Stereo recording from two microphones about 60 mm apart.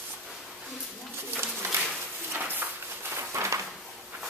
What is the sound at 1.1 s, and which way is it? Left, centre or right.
Pigeon, right.